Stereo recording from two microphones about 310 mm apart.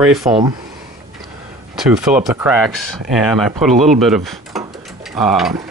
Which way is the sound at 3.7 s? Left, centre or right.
Right.